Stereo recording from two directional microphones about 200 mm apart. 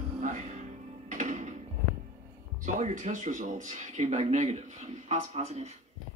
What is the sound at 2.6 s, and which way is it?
Speech, 40° right (ahead or behind).